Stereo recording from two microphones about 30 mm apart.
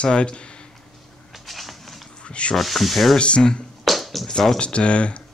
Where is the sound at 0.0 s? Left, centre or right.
Left.